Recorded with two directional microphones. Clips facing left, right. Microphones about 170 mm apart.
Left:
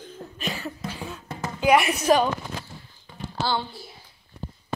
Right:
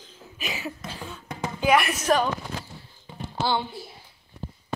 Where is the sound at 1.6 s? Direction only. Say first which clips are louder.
Left 2 dB; 15° left (ahead or behind).